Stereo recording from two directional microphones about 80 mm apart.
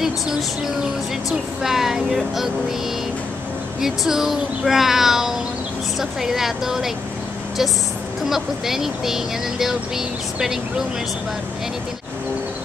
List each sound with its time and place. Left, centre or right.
1.3 s speech: centre
3.8 s speech: centre
8.3 s speech: centre